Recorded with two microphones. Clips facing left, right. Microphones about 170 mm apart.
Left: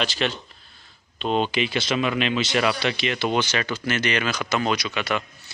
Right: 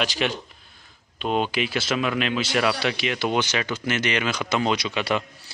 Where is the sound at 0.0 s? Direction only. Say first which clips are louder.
Even; 15° right (ahead or behind).